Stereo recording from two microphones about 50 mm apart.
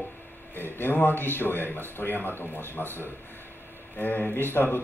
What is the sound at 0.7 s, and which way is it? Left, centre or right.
A man's voice, left.